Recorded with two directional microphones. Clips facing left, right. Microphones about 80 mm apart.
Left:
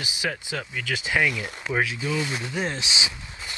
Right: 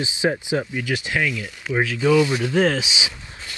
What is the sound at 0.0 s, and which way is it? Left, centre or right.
Speech, right.